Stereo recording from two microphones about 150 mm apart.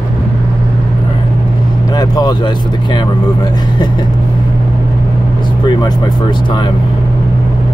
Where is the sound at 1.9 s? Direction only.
25° left (ahead or behind).